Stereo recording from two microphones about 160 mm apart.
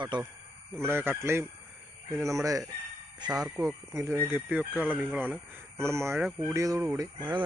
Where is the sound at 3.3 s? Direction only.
10° right (ahead or behind).